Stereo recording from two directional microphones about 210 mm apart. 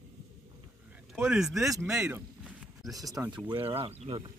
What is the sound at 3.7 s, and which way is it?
Speech, 10° right (ahead or behind).